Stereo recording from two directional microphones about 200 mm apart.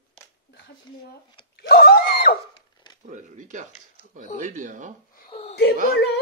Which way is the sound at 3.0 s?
40° right (ahead or behind).